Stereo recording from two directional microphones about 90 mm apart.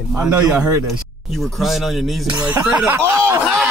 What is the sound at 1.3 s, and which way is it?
Speech, centre (ahead or behind).